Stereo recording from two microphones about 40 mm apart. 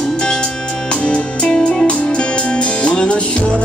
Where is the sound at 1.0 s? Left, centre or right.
Left.